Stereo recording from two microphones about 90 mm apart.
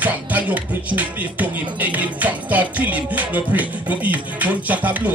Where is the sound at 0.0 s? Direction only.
15° right (ahead or behind).